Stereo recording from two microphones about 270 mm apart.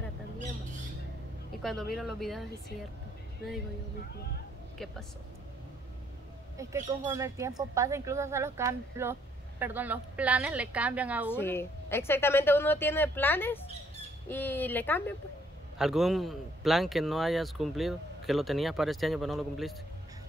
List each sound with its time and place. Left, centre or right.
1.6 s speech: centre
6.5 s speech: centre
11.3 s speech: centre